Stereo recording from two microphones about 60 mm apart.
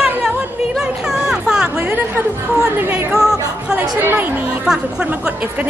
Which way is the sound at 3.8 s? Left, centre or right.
Right.